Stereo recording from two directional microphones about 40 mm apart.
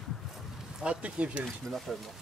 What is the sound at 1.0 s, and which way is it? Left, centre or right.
Speech, right.